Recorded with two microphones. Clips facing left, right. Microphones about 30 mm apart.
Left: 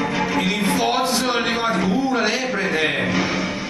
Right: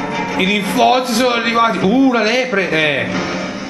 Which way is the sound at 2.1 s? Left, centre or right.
Right.